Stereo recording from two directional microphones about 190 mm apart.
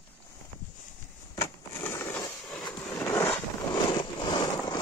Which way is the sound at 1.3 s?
15° left (ahead or behind).